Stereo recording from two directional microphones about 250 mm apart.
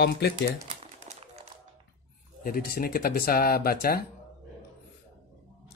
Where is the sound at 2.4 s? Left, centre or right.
Left.